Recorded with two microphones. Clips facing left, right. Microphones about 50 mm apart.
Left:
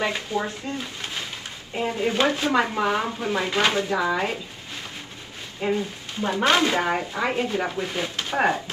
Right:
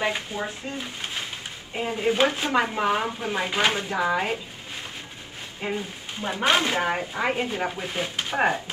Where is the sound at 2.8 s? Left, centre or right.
Centre.